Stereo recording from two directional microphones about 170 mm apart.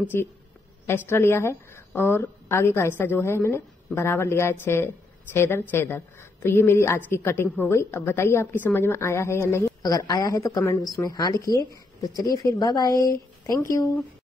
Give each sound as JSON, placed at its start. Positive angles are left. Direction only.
{"t": 0.0, "sound": "a woman's voice", "side_deg": 15}